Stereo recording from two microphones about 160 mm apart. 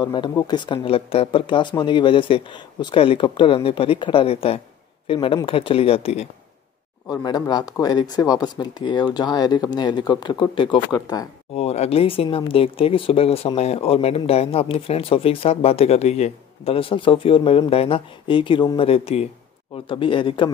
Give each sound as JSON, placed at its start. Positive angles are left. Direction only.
{"t": 0.0, "sound": "speech", "side_deg": 30}
{"t": 7.1, "sound": "speech", "side_deg": 25}
{"t": 11.5, "sound": "speech", "side_deg": 40}